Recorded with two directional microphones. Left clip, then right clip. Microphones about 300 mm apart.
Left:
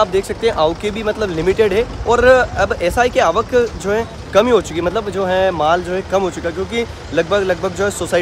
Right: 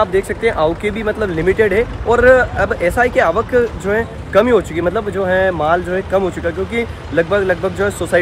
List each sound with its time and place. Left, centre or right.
0.0 s speech: centre